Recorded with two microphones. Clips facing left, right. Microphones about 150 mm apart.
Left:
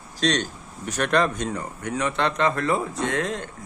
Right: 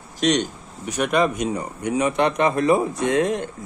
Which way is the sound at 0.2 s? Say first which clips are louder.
Right 4 dB; 20° right (ahead or behind).